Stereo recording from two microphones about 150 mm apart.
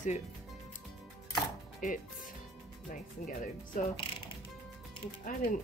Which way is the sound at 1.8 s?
65° left (ahead or behind).